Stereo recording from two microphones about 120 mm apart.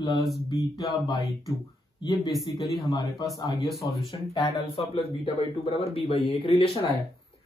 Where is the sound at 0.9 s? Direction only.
40° left (ahead or behind).